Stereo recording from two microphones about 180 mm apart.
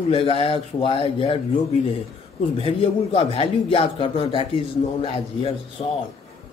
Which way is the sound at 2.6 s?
30° left (ahead or behind).